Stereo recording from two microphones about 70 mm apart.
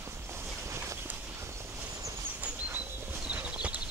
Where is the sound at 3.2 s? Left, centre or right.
Centre.